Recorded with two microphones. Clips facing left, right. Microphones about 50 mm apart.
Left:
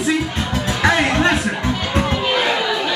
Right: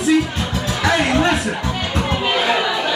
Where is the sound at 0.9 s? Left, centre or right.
Left.